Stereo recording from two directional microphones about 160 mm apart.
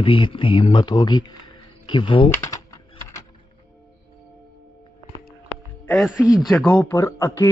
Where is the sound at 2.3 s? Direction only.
20° left (ahead or behind).